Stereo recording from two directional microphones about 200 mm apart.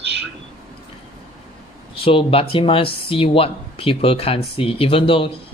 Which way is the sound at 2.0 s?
30° left (ahead or behind).